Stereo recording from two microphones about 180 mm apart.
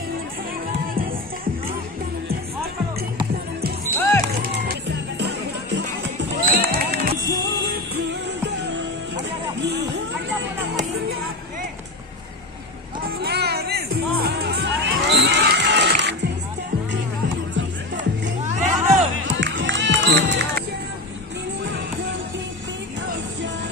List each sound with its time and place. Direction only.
4.0 s music: 15° left (ahead or behind)
4.4 s music: 60° right (ahead or behind)
6.4 s music: 55° right (ahead or behind)
8.6 s music: 80° right
13.2 s music: 65° right (ahead or behind)
18.5 s music: 40° right (ahead or behind)
19.3 s music: 90° right